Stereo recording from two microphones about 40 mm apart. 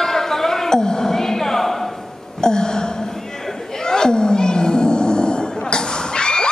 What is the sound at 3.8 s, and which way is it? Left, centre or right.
Roar, centre.